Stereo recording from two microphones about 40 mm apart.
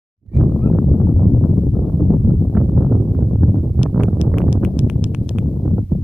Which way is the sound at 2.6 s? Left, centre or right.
Centre.